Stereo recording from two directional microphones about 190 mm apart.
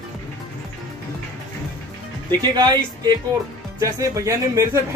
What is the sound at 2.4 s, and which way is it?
Speech, 20° right (ahead or behind).